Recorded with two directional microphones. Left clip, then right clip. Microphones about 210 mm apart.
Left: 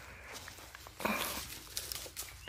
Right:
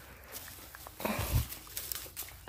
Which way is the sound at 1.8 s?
20° right (ahead or behind).